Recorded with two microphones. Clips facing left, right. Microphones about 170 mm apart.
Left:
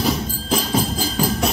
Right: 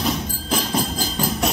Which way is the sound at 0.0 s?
Centre (ahead or behind).